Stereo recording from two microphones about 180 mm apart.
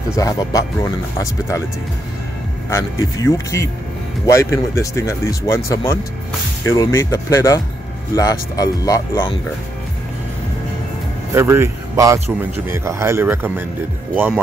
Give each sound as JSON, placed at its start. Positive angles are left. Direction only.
{"t": 0.1, "sound": "speech", "side_deg": 20}
{"t": 2.7, "sound": "speech", "side_deg": 15}
{"t": 6.6, "sound": "speech", "side_deg": 20}
{"t": 11.3, "sound": "a man's voice", "side_deg": -15}